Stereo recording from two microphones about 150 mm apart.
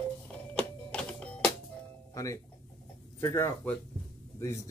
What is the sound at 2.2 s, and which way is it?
Speech, 20° left (ahead or behind).